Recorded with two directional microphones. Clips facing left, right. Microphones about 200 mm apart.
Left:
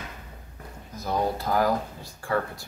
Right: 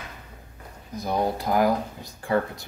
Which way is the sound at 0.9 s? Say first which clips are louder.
Right 2 dB; 15° right (ahead or behind).